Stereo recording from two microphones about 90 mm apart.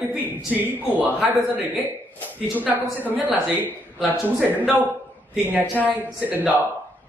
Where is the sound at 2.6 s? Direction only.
20° right (ahead or behind).